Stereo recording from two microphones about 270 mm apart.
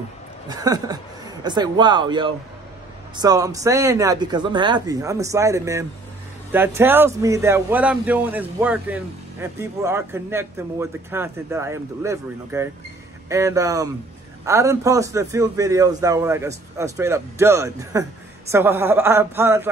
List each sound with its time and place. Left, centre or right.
0.5 s a man's voice: centre